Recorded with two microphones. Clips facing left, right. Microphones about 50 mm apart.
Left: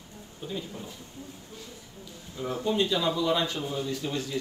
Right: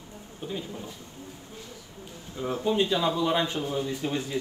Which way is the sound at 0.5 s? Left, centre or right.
Centre.